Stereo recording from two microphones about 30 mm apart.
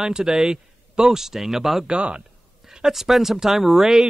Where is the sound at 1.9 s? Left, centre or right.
Right.